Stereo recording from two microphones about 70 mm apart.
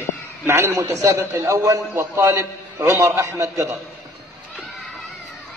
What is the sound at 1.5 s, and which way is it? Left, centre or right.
Mantra, right.